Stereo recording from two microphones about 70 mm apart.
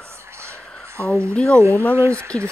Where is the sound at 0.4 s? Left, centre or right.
Right.